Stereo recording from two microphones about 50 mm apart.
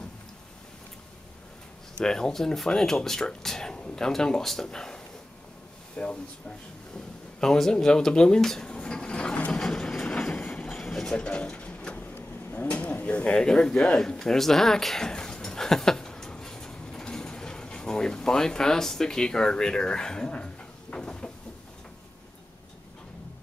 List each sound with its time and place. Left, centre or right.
2.0 s speech: centre
7.3 s speech: centre
8.6 s printer: centre
9.6 s train: centre
11.1 s drawer open or close: left
12.5 s a sound: left
13.4 s speech: centre
20.9 s a sound: centre